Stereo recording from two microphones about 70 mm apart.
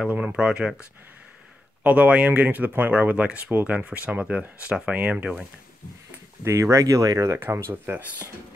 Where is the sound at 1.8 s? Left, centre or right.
Right.